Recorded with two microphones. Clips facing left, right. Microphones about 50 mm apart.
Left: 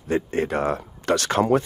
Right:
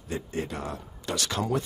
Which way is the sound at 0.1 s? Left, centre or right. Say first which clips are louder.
Left 10 dB; left.